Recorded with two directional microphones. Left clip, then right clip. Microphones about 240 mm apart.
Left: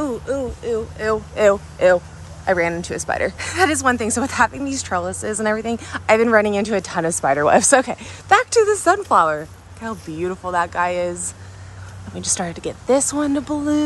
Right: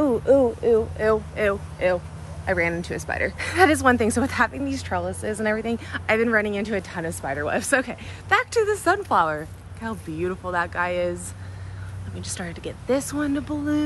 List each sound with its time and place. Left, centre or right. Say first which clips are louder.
0.3 s speech: right 9 dB; centre
0.9 s speech: even; centre
1.3 s speech: left 8 dB; centre
12.2 s speech: left 9 dB; centre